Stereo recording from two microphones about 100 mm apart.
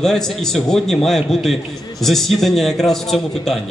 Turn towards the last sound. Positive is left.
turn(degrees=5)  # may be behind; listen again after turning